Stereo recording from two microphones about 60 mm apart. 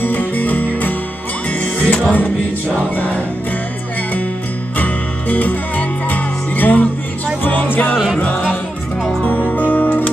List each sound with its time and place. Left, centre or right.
0.0 s music: left
4.7 s music: left